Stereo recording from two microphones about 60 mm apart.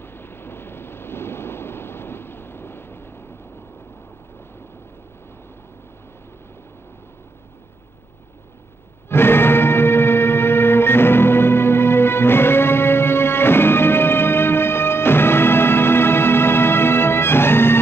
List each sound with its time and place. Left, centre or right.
0.0 s vehicle: left
9.1 s music: left